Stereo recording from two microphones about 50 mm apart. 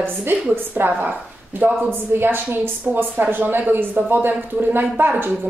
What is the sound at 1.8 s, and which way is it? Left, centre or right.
A woman's voice, right.